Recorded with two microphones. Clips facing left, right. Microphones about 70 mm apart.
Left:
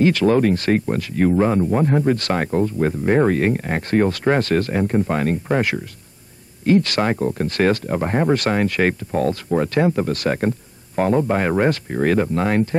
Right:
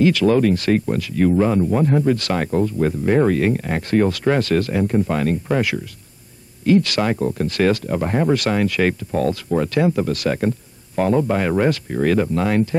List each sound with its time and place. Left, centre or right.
0.0 s speech: left